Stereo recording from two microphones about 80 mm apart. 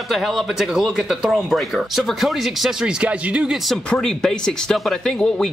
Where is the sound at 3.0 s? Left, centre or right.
Centre.